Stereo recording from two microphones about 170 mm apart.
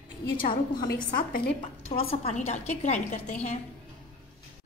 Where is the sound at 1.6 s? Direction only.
35° left (ahead or behind).